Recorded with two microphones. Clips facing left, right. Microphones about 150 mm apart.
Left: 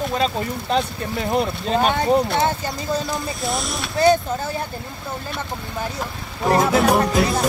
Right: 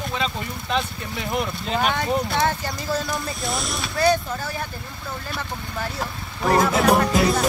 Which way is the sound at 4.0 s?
20° left (ahead or behind).